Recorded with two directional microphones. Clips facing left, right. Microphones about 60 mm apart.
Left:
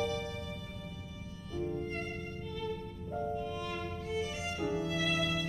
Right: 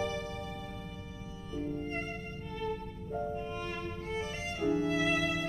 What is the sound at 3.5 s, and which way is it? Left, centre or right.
Violin, right.